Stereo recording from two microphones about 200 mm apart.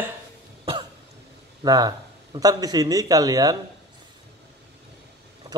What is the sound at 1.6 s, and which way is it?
Speech, 20° right (ahead or behind).